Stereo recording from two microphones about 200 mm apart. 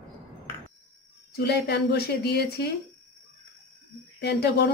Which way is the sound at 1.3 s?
55° left (ahead or behind).